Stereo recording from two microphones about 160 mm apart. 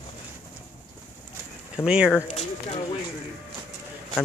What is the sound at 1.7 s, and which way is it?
Speech, 5° right (ahead or behind).